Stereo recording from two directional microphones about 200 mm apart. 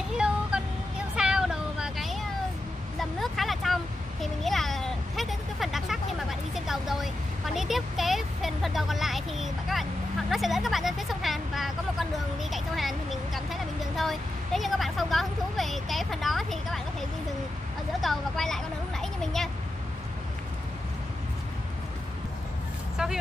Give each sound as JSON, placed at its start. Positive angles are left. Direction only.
{"t": 0.1, "sound": "a sound", "side_deg": -5}
{"t": 6.5, "sound": "vehicle", "side_deg": 0}
{"t": 18.0, "sound": "vehicle", "side_deg": 0}